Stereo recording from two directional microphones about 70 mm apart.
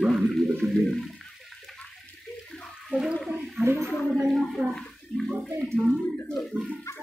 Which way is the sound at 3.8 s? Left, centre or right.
Left.